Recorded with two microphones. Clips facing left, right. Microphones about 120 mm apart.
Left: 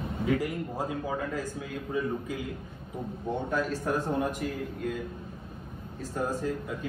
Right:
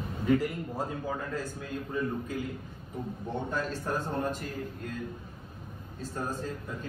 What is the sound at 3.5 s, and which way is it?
A man's voice, 5° left (ahead or behind).